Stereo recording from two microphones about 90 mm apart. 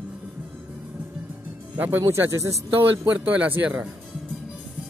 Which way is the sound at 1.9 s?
30° right (ahead or behind).